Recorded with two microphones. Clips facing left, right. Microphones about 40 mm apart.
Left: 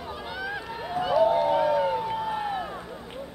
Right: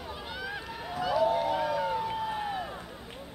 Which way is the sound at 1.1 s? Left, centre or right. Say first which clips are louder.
Left 6 dB; centre.